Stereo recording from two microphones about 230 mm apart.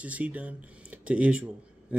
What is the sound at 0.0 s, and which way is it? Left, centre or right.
Speech, centre.